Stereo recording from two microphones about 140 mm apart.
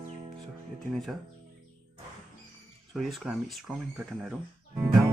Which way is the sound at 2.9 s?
Centre (ahead or behind).